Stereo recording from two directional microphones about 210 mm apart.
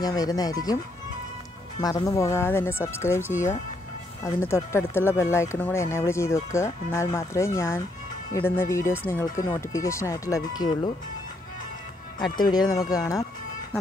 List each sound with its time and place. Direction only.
0.0 s speech: 15° left (ahead or behind)
1.8 s speech: 20° left (ahead or behind)
12.4 s speech: 20° left (ahead or behind)